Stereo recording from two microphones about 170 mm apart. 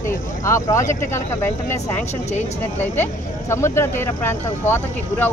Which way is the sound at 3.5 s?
15° left (ahead or behind).